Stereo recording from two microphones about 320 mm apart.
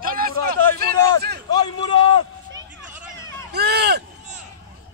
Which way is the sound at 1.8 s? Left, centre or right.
Centre.